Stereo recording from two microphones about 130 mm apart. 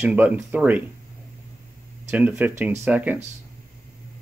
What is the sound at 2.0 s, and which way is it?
Speech, 10° right (ahead or behind).